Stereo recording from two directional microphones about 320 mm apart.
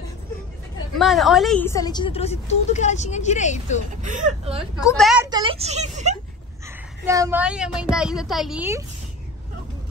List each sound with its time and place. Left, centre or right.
0.9 s a woman's voice: centre; by 3.8 s left
4.0 s speech: right
4.7 s speech: centre; by 6.1 s right
7.1 s a woman's voice: centre